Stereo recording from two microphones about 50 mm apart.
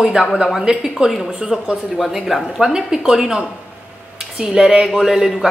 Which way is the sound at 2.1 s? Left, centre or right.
Centre.